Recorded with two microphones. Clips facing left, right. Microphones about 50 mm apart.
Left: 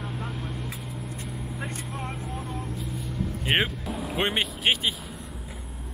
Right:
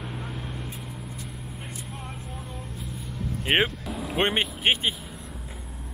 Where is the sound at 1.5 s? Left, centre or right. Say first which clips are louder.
Left 5 dB; left.